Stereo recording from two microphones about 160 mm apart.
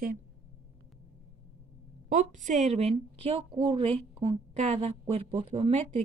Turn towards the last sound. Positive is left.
turn(degrees=-35)  # may be behind; listen again after turning